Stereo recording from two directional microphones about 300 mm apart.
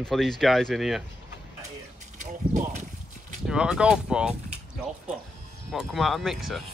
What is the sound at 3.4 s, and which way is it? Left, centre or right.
Speech, centre.